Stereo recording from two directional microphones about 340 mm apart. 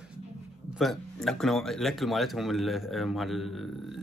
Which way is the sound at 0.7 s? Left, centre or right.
Centre.